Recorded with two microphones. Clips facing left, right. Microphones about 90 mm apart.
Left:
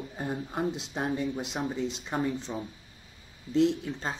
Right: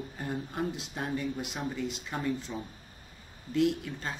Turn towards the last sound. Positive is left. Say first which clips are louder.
# left 2 dB
turn(degrees=25)  # may be behind; listen again after turning